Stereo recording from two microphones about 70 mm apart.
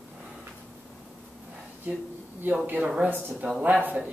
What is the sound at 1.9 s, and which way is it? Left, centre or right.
Speech, right.